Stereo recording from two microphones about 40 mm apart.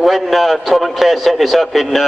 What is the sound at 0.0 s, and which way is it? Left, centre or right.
A man's voice, centre.